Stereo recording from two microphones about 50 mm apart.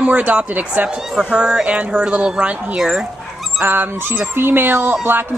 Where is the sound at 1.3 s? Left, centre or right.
Centre.